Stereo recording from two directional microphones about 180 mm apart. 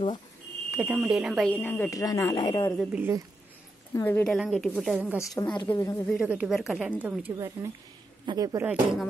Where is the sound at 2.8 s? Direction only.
10° right (ahead or behind).